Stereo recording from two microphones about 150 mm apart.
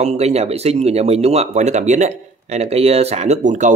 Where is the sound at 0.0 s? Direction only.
45° right (ahead or behind).